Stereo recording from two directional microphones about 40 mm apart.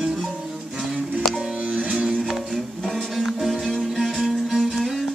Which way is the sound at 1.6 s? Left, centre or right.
Right.